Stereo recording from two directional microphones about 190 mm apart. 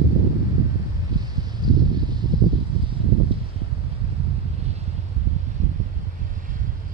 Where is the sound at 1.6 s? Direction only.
20° right (ahead or behind).